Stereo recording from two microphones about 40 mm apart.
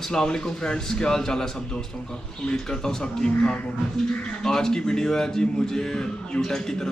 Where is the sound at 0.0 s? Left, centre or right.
Centre.